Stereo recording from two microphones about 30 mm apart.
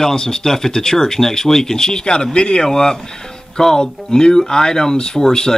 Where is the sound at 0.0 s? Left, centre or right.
Left.